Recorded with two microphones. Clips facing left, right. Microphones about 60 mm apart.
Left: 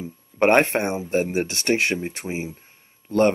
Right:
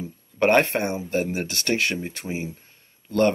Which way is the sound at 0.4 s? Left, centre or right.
Left.